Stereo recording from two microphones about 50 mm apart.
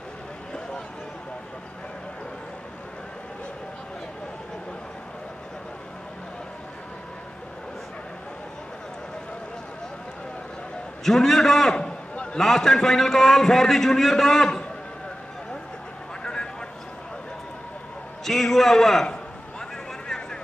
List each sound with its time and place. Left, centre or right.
11.1 s a man's voice: centre
11.8 s a sound: left
12.4 s a man's voice: centre
18.2 s a man's voice: centre